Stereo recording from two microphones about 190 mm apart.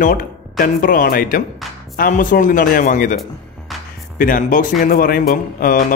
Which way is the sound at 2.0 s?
45° left (ahead or behind).